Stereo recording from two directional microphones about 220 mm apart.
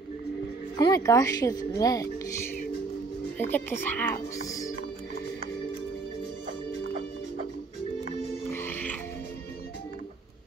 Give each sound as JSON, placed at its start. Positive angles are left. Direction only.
{"t": 0.7, "sound": "speech", "side_deg": 15}
{"t": 3.3, "sound": "speech", "side_deg": 10}
{"t": 4.5, "sound": "music", "side_deg": 15}
{"t": 8.5, "sound": "music", "side_deg": 10}